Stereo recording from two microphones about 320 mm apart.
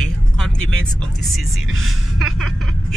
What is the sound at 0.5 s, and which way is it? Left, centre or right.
Speech, right.